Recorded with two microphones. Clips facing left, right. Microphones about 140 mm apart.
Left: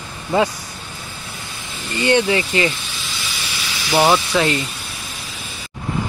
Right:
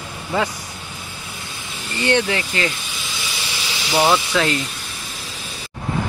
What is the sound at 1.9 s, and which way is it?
Speech, 10° left (ahead or behind).